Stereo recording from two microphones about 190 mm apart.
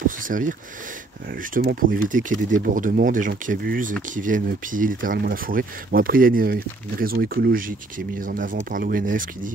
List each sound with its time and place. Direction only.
0.3 s speech: 45° right (ahead or behind)